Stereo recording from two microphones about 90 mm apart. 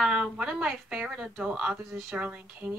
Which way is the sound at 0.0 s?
5° right (ahead or behind).